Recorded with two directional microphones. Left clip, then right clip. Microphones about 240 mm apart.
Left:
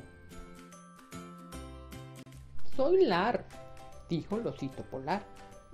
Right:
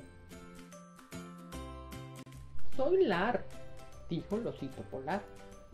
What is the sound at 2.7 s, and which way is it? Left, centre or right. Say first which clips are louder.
Speech: left 3 dB; left.